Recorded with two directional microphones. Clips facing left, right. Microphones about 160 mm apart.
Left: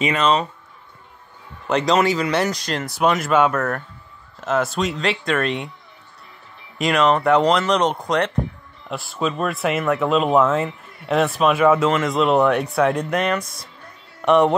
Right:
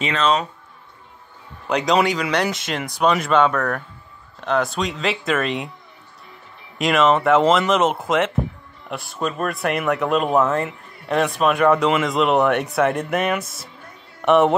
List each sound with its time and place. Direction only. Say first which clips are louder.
0.0 s speech: left 2 dB; 5° left (ahead or behind)
1.7 s speech: left 1 dB; centre (ahead or behind)
6.8 s speech: right 1 dB; centre (ahead or behind)